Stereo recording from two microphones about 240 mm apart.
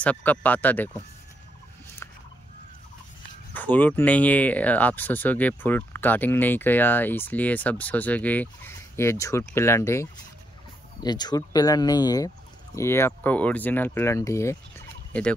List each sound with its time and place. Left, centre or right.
0.0 s speech: centre
3.5 s speech: centre